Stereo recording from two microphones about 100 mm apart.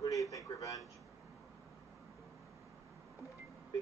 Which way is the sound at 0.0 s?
35° left (ahead or behind).